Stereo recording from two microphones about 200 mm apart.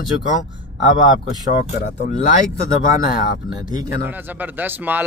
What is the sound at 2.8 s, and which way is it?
Speech, 45° left (ahead or behind).